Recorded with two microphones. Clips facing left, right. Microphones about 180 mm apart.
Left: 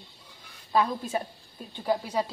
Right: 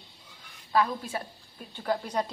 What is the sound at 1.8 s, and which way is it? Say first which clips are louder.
Speech: left 2 dB; 10° left (ahead or behind).